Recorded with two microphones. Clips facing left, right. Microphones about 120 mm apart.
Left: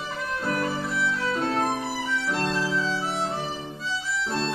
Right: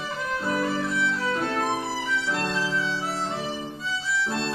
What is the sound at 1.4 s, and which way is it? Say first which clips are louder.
Music: left 5 dB; 25° left (ahead or behind).